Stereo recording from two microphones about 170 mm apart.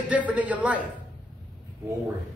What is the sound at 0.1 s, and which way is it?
Speech, 10° right (ahead or behind).